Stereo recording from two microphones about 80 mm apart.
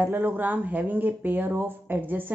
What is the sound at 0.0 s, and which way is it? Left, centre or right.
A woman's voice, right.